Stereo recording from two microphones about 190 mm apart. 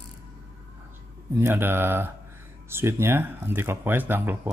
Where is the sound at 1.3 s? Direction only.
10° right (ahead or behind).